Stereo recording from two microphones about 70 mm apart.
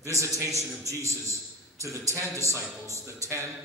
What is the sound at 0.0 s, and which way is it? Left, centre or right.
A man's voice, right.